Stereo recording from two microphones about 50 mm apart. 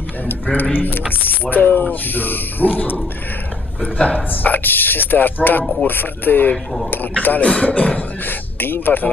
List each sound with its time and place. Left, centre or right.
0.3 s speech: left
6.5 s speech: centre
6.9 s speech: left
8.3 s speech: left